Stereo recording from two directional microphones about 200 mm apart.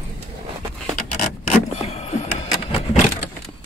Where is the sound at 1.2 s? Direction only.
30° left (ahead or behind).